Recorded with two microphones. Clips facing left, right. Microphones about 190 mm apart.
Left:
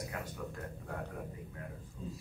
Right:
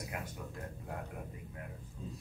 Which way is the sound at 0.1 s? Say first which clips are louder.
Right 1 dB; 20° right (ahead or behind).